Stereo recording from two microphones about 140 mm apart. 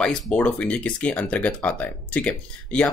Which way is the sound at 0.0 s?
5° left (ahead or behind).